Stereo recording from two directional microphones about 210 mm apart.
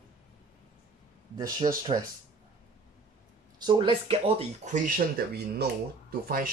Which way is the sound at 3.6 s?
25° right (ahead or behind).